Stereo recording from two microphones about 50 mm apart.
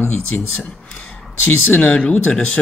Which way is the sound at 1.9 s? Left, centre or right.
Left.